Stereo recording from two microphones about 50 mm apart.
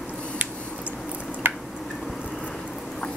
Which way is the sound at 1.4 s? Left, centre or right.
Right.